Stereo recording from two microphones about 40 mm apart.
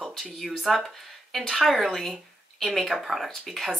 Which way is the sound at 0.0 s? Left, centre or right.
Centre.